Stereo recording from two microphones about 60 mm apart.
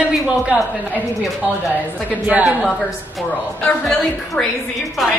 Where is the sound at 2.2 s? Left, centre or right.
Right.